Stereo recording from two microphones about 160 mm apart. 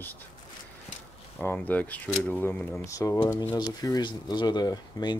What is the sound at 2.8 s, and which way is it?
Speech, 20° left (ahead or behind).